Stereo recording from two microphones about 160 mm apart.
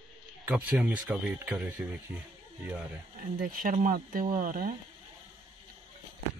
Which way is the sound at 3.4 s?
60° right (ahead or behind).